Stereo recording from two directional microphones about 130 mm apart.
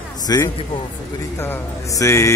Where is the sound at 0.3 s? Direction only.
25° left (ahead or behind).